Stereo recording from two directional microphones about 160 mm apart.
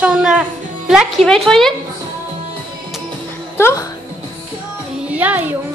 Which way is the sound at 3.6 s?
15° left (ahead or behind).